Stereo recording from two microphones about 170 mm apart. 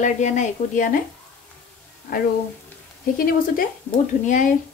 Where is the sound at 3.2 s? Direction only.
60° left (ahead or behind).